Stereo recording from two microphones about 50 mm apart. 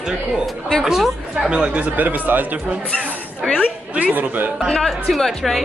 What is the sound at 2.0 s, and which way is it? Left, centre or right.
A woman's voice, right.